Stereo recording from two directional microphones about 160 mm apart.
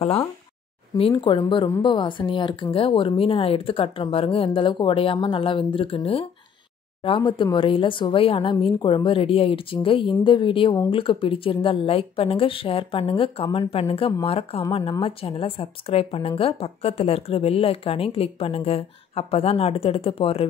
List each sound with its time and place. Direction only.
0.9 s a woman's voice: 35° left (ahead or behind)